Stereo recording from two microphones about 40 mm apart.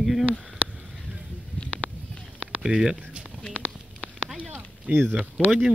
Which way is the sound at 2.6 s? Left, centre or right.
Centre.